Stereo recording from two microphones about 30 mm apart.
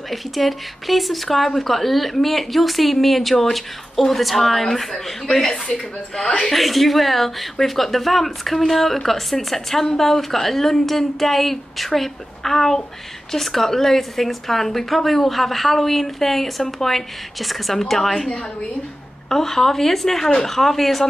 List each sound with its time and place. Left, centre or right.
0.1 s speech: centre
4.9 s speech: left
5.7 s speech: left
6.5 s a woman's voice: centre